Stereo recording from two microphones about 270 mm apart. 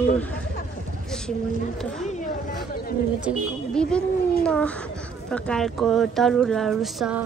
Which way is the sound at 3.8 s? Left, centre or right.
Centre.